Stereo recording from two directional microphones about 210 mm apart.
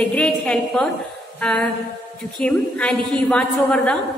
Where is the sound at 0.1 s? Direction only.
5° left (ahead or behind).